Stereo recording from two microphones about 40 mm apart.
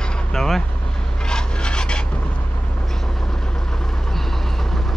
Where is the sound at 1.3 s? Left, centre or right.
Left.